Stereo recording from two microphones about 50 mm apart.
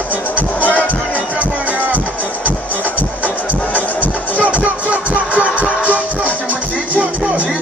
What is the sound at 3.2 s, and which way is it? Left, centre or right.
Music, left.